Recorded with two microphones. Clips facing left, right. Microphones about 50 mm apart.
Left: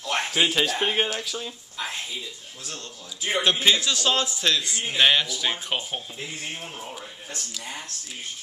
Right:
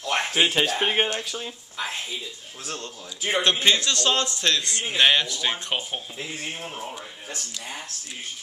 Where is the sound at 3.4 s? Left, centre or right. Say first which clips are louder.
Even; centre.